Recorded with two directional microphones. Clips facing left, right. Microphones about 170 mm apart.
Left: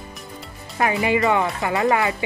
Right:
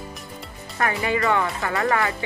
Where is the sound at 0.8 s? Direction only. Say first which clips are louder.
Left 3 dB; 15° left (ahead or behind).